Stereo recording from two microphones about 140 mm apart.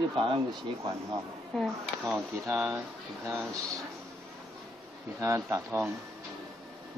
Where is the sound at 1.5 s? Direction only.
Centre (ahead or behind).